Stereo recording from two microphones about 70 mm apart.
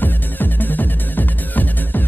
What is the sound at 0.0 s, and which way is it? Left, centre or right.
Music, left.